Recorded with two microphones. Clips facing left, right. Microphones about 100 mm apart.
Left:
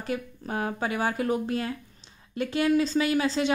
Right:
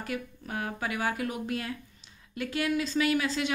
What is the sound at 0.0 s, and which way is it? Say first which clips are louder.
A woman's voice: left 4 dB; 30° left (ahead or behind).